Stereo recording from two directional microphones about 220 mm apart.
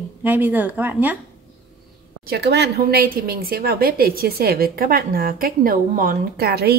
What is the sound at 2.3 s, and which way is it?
Speech, 50° right (ahead or behind).